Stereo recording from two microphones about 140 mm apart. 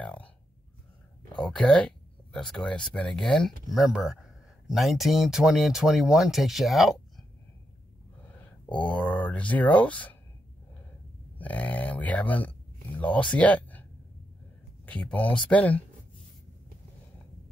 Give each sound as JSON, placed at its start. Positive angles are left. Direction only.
{"t": 0.0, "sound": "a sound", "side_deg": 10}
{"t": 1.4, "sound": "speech", "side_deg": 5}
{"t": 8.7, "sound": "speech", "side_deg": 10}
{"t": 11.3, "sound": "speech", "side_deg": 10}
{"t": 14.9, "sound": "speech", "side_deg": 10}